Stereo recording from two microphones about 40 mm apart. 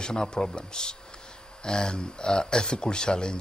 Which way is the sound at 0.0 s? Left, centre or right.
Centre.